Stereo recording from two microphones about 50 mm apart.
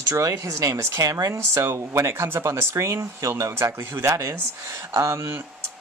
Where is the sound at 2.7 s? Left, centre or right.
Right.